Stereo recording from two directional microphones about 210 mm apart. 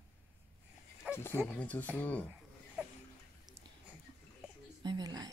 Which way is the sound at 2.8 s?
5° right (ahead or behind).